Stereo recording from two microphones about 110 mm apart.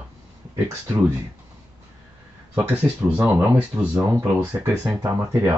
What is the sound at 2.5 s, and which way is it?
Speech, 15° right (ahead or behind).